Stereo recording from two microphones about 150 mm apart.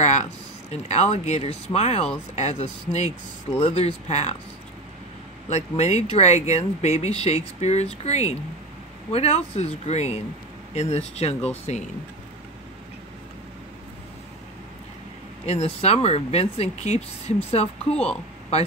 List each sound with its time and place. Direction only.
0.0 s a sound: 50° left (ahead or behind)
1.1 s speech: 50° left (ahead or behind)
5.5 s speech: 45° left (ahead or behind)
15.4 s speech: 45° left (ahead or behind)